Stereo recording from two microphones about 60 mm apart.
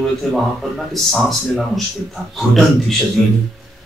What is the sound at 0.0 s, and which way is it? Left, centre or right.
Speech, centre.